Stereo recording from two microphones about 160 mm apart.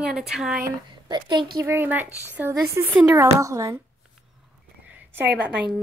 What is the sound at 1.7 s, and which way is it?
Speech, 15° right (ahead or behind).